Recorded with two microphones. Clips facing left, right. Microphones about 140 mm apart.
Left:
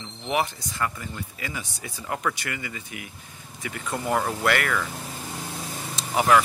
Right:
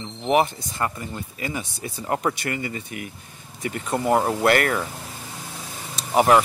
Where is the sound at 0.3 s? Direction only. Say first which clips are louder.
Right 6 dB; 25° right (ahead or behind).